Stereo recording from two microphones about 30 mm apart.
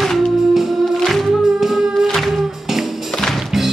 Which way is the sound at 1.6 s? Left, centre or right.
Centre.